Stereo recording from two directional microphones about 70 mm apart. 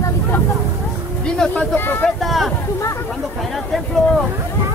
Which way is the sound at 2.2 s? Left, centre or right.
Centre.